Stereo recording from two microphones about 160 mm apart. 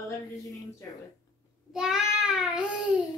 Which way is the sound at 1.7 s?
5° right (ahead or behind).